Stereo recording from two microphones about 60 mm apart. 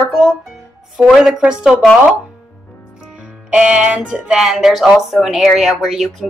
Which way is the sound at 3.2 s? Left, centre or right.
Centre.